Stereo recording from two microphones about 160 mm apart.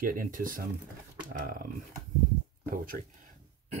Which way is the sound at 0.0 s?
60° right (ahead or behind).